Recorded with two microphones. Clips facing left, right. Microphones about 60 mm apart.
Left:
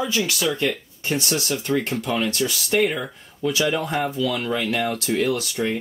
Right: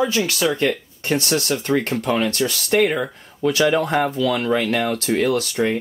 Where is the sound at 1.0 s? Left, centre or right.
Right.